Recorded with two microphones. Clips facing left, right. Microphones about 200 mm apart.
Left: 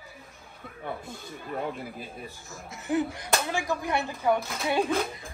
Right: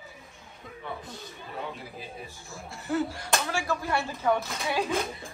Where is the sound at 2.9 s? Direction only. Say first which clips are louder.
Left 1 dB; 15° left (ahead or behind).